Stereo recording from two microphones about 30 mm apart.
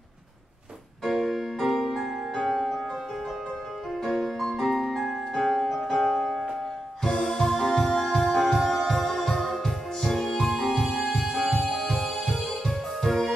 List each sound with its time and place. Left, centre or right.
1.0 s music: centre
2.3 s music: left
4.0 s music: centre